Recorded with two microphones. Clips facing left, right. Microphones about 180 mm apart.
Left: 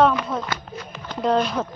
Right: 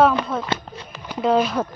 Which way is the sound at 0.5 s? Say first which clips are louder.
Right 4 dB; 25° right (ahead or behind).